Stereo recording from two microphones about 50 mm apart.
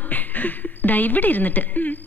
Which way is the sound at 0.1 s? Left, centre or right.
Left.